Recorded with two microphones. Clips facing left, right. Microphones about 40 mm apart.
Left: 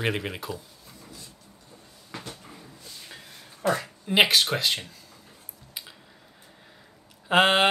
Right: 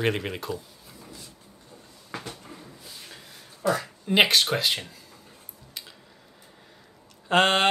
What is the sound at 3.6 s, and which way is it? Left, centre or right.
Speech, left.